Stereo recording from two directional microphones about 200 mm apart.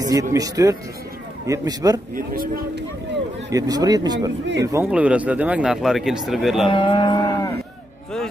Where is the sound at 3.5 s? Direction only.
20° right (ahead or behind); by 6.7 s centre (ahead or behind).